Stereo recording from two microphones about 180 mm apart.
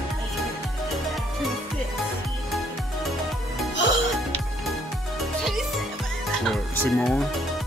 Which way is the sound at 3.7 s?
90° left.